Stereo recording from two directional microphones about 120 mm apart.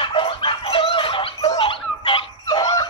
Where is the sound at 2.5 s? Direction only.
30° left (ahead or behind).